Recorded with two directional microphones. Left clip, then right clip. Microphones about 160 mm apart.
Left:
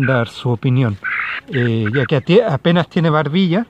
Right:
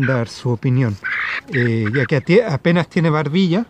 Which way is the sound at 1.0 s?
20° right (ahead or behind).